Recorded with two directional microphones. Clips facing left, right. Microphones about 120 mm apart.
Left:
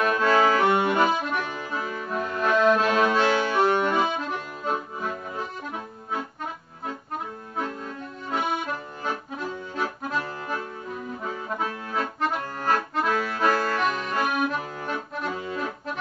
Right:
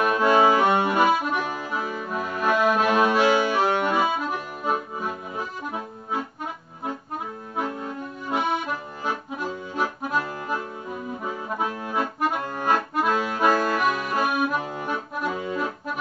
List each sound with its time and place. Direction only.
0.0 s accordion: 15° right (ahead or behind)
7.5 s accordion: 15° right (ahead or behind)
9.8 s accordion: 15° right (ahead or behind)